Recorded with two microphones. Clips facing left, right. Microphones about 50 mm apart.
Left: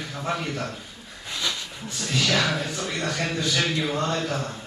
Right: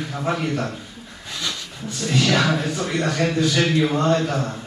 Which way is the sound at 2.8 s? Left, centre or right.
Centre.